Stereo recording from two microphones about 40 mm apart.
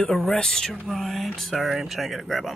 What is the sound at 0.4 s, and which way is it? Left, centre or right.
Speech, centre.